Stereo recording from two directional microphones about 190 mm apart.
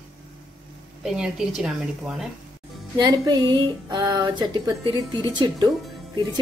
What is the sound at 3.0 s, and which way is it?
Speech, 20° right (ahead or behind).